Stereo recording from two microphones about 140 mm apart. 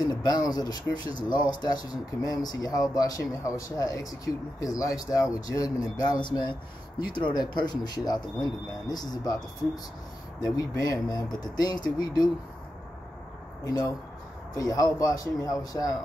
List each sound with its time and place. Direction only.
0.0 s speech: 30° left (ahead or behind)
10.4 s speech: 25° left (ahead or behind)
13.7 s speech: 25° left (ahead or behind)